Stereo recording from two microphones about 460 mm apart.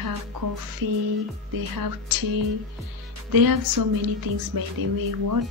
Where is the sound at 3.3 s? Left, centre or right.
Right.